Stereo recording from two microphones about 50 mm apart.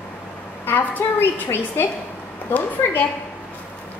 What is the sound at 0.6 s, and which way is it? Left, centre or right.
A woman's voice, left.